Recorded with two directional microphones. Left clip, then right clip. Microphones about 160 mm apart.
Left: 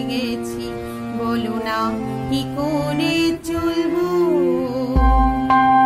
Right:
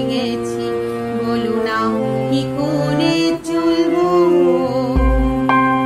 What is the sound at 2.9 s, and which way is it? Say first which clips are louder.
Music: right 3 dB; 40° left (ahead or behind).